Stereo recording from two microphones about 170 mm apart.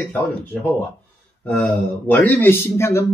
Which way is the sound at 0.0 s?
5° left (ahead or behind).